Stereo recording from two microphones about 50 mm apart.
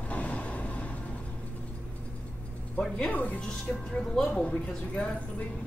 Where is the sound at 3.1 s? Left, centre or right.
Left.